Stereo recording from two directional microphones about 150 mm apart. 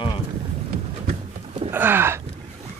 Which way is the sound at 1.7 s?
15° right (ahead or behind).